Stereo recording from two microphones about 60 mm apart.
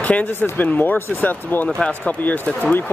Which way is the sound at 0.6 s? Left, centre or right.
Left.